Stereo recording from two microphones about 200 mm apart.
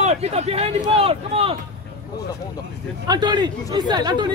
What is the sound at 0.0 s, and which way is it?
Speech, 35° right (ahead or behind).